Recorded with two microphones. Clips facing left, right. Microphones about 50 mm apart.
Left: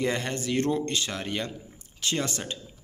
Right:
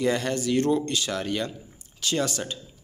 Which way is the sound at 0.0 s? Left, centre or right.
Left.